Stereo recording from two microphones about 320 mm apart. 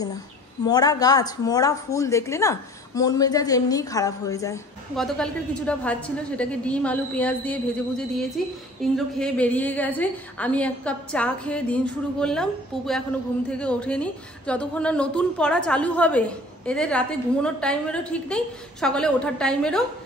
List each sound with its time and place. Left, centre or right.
0.7 s a woman's voice: centre